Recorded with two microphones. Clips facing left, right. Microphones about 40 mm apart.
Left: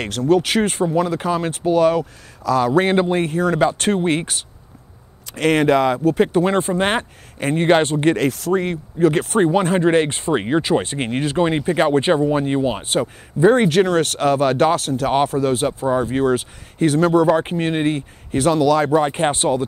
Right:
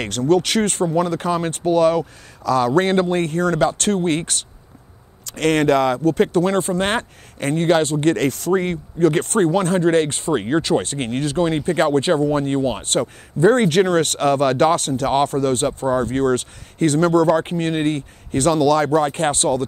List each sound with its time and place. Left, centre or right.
0.0 s speech: centre
7.5 s speech: left
8.1 s speech: centre